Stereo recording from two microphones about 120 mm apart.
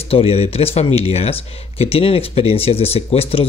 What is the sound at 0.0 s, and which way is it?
Speech, 55° left (ahead or behind).